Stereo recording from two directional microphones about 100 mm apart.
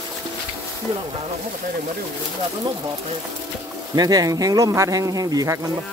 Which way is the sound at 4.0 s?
40° right (ahead or behind).